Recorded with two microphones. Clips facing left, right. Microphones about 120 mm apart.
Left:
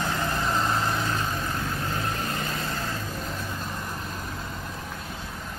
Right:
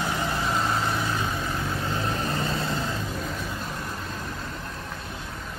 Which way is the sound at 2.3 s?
30° right (ahead or behind).